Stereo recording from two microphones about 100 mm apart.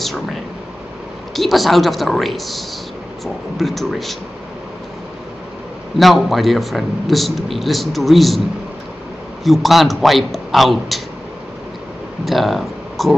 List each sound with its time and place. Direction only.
0.0 s a man's voice: centre (ahead or behind)
5.9 s a man's voice: centre (ahead or behind)
9.4 s a man's voice: centre (ahead or behind)
12.3 s speech: centre (ahead or behind)